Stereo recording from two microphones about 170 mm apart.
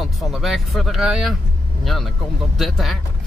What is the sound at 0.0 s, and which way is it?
Speech, centre (ahead or behind).